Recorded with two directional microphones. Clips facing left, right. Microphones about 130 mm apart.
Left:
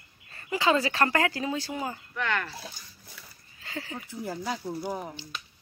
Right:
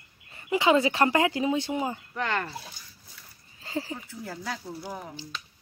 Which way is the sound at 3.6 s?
30° right (ahead or behind).